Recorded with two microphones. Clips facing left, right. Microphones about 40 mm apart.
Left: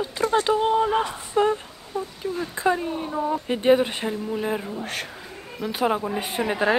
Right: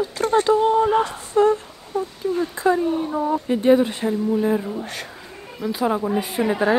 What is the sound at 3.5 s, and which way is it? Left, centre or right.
Speech, left.